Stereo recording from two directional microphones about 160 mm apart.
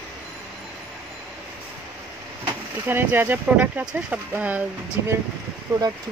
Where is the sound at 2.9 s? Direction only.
15° right (ahead or behind).